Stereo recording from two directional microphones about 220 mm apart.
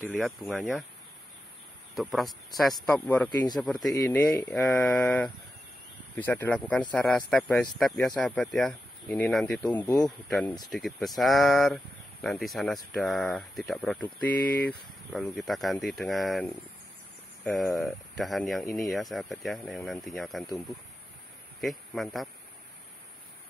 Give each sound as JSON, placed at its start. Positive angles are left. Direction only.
{"t": 0.1, "sound": "speech", "side_deg": 0}
{"t": 2.0, "sound": "speech", "side_deg": 0}
{"t": 3.3, "sound": "speech", "side_deg": 20}
{"t": 3.6, "sound": "speech", "side_deg": 0}
{"t": 3.9, "sound": "speech", "side_deg": 15}
{"t": 21.5, "sound": "speech", "side_deg": 0}